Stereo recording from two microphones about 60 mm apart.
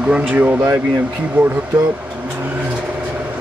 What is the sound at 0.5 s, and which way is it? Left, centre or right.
Speech, right.